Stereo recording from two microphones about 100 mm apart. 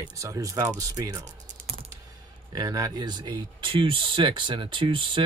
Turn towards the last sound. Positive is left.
turn(degrees=-55)  # may be behind; listen again after turning